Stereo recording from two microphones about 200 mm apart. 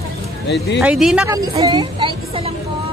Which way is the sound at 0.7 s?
Centre (ahead or behind).